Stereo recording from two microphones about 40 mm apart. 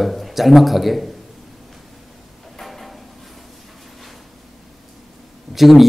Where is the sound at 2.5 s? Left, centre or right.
Centre.